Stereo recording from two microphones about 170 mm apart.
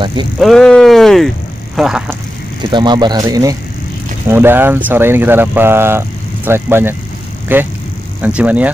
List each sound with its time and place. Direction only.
0.0 s speech: 25° right (ahead or behind)
0.4 s speech: 5° left (ahead or behind)
2.7 s speech: 25° right (ahead or behind); by 8.6 s 10° right (ahead or behind)